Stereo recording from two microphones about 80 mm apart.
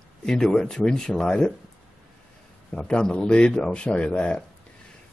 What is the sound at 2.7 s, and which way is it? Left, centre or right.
Speech, centre.